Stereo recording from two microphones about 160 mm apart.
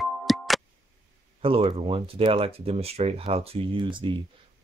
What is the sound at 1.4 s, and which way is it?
Speech, 35° right (ahead or behind).